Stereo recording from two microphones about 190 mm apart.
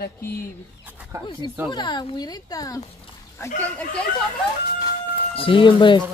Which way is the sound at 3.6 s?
5° left (ahead or behind).